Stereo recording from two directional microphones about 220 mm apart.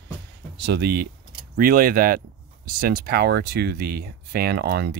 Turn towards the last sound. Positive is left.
turn(degrees=-45)  # may be behind; listen again after turning